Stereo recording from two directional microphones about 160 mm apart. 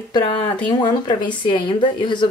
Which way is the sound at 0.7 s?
30° left (ahead or behind).